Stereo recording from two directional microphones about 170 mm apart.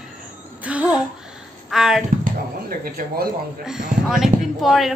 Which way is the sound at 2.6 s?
60° right (ahead or behind).